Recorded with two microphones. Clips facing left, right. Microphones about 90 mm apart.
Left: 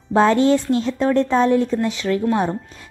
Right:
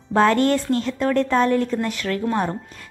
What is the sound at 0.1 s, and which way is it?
Speech, 15° left (ahead or behind).